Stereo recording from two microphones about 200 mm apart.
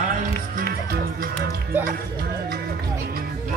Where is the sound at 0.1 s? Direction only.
40° right (ahead or behind).